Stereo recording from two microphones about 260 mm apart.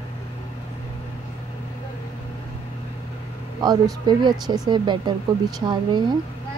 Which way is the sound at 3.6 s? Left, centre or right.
Centre.